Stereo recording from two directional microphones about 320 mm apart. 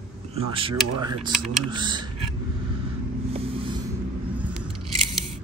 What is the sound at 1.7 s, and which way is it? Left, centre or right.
Speech, centre.